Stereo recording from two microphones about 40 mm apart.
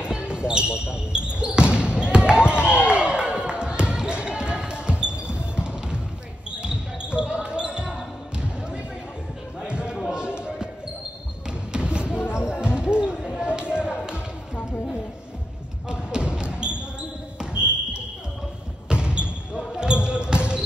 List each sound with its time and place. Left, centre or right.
0.0 s basketball bounce: right
2.6 s basketball bounce: left
2.9 s basketball bounce: right
9.7 s a sound: right
11.7 s basketball bounce: right
12.2 s music: left
12.7 s basketball bounce: right
13.5 s a sound: right
15.9 s basketball bounce: right
18.9 s basketball bounce: right